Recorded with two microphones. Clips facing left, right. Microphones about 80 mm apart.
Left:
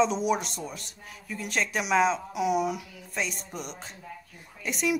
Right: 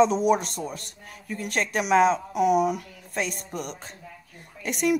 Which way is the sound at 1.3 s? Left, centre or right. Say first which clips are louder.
Right 3 dB; right.